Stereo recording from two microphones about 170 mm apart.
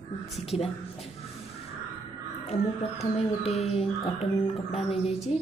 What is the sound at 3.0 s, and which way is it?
Music, 40° left (ahead or behind).